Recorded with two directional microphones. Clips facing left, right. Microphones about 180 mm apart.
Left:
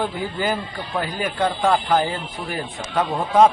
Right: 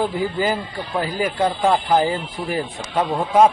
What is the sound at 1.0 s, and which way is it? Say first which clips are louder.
Speech: right 3 dB; 5° right (ahead or behind).